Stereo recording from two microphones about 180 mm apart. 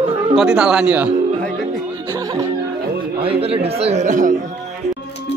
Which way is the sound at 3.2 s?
30° right (ahead or behind).